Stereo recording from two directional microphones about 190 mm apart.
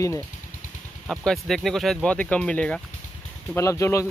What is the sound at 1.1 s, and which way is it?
Speech, centre (ahead or behind).